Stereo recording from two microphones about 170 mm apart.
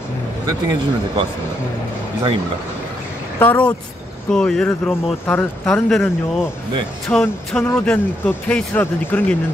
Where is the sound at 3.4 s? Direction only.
10° left (ahead or behind).